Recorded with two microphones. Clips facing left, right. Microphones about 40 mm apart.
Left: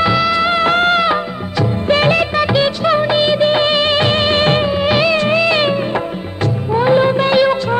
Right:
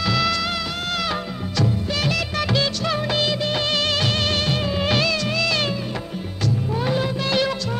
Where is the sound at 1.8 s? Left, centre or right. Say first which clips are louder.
Left 11 dB; left.